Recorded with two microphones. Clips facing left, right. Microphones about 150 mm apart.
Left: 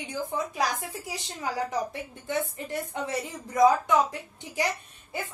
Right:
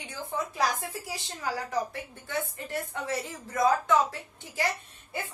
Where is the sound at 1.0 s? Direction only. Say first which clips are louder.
Left 1 dB; 20° left (ahead or behind).